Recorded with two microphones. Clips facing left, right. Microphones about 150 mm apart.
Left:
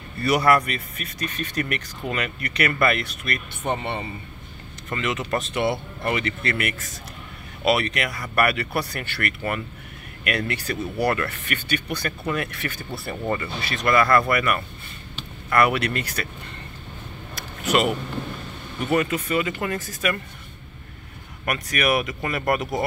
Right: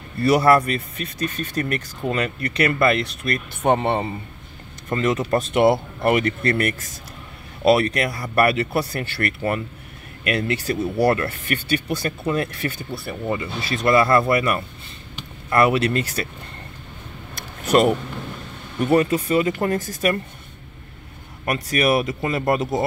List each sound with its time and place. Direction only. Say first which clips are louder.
0.2 s speech: right 4 dB; 30° right (ahead or behind)
5.5 s speech: right 7 dB; 60° right (ahead or behind); by 16.3 s 30° right (ahead or behind)
17.6 s speech: right 5 dB; 40° right (ahead or behind)
21.5 s speech: right 3 dB; 30° right (ahead or behind)